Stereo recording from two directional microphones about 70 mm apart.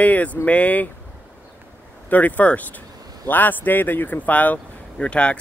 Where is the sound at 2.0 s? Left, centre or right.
Left.